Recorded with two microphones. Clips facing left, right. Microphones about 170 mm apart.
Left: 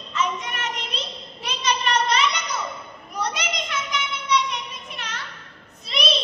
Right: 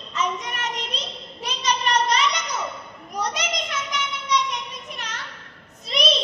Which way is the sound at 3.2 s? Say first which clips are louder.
Right 1 dB; 40° right (ahead or behind).